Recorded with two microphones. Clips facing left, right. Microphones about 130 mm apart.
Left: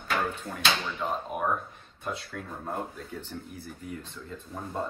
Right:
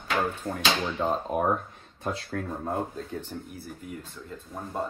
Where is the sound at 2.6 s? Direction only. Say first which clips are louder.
Right 4 dB; 20° right (ahead or behind).